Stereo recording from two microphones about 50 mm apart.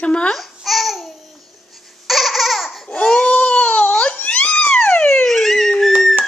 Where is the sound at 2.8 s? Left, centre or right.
Centre.